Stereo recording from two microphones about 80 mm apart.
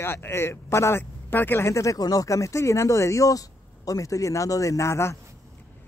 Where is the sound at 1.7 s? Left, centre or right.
Left.